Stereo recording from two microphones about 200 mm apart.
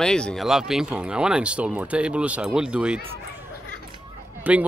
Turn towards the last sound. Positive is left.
turn(degrees=-10)  # may be behind; listen again after turning